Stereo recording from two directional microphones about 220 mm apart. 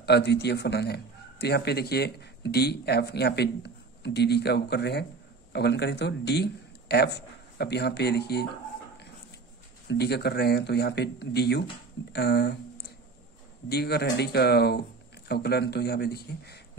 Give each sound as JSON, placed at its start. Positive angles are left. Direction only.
{"t": 0.0, "sound": "a man's voice", "side_deg": 50}
{"t": 9.8, "sound": "speech", "side_deg": 50}
{"t": 13.7, "sound": "speech", "side_deg": 45}